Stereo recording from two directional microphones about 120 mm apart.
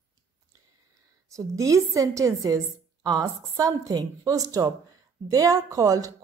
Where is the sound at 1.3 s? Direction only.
30° right (ahead or behind).